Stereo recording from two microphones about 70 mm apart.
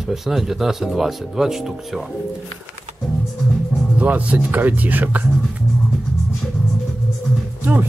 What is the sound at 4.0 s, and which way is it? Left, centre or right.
Speech, right.